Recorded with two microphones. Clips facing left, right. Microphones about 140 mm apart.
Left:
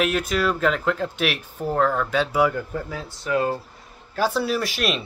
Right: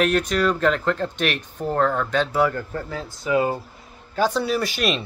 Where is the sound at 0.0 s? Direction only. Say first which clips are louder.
Right 2 dB; 5° left (ahead or behind).